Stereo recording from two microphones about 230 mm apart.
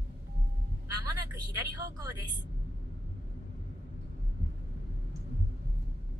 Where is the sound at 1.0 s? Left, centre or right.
Centre.